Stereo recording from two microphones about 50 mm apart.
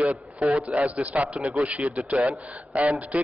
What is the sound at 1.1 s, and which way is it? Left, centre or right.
A man's voice, right.